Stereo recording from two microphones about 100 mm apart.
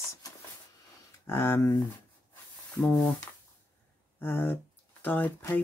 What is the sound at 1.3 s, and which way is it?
Speech, 25° left (ahead or behind).